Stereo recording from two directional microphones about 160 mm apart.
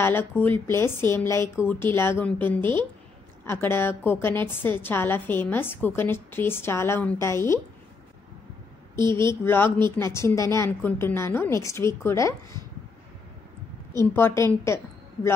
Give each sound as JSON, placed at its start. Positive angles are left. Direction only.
{"t": 0.0, "sound": "a woman's voice", "side_deg": 15}
{"t": 9.3, "sound": "a woman's voice", "side_deg": 15}
{"t": 13.9, "sound": "a woman's voice", "side_deg": 15}